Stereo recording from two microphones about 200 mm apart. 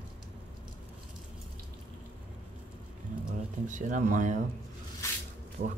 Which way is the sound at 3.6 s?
40° right (ahead or behind).